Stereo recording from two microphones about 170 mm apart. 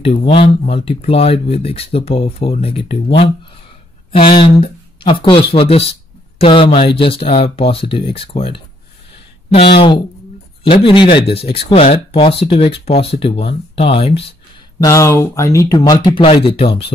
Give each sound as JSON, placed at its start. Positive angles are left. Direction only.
{"t": 0.0, "sound": "speech", "side_deg": 30}
{"t": 4.4, "sound": "speech", "side_deg": 30}
{"t": 9.8, "sound": "speech", "side_deg": 30}
{"t": 14.8, "sound": "speech", "side_deg": 20}